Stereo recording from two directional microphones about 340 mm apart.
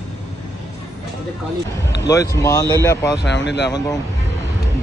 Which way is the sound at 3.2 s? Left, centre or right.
Left.